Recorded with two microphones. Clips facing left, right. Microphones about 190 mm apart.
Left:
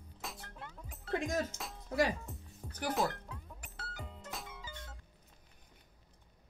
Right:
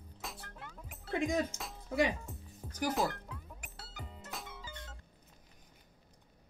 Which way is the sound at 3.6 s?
15° right (ahead or behind).